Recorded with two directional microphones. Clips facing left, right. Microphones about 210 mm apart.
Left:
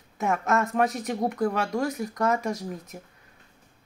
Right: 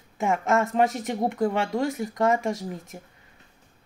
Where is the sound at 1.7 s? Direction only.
Centre (ahead or behind).